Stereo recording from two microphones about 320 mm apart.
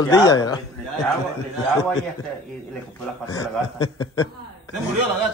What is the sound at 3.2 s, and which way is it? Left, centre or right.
A man's voice, centre.